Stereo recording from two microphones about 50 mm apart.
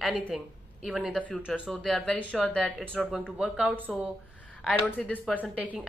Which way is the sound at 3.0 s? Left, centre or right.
Centre.